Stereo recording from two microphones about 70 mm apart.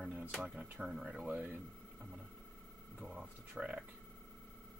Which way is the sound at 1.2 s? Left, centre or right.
Right.